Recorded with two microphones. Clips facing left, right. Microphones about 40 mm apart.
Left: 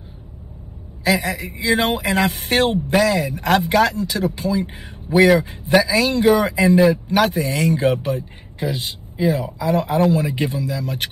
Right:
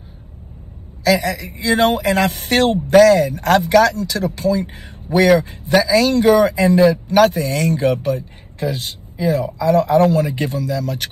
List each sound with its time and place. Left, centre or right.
1.0 s speech: left